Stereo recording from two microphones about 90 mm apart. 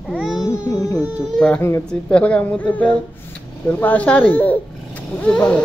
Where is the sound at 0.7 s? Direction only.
35° left (ahead or behind).